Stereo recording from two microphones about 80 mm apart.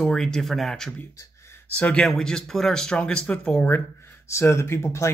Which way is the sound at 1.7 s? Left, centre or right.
Centre.